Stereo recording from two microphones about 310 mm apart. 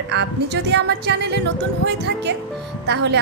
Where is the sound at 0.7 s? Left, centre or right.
Right.